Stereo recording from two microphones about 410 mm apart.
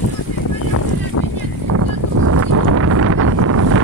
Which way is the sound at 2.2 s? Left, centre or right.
Right.